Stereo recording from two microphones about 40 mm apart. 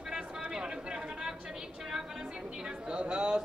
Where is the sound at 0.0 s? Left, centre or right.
Centre.